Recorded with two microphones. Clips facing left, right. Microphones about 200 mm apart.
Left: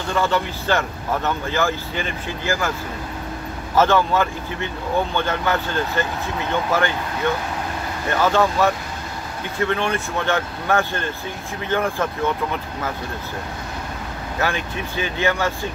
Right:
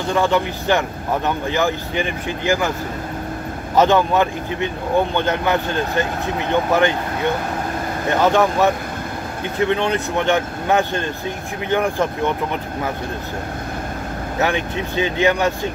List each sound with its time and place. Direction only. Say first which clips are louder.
0.0 s speech: right 3 dB; 15° right (ahead or behind)
3.7 s speech: right 2 dB; 15° right (ahead or behind)
8.1 s speech: right 2 dB; 20° right (ahead or behind)
14.4 s speech: right 4 dB; 20° right (ahead or behind)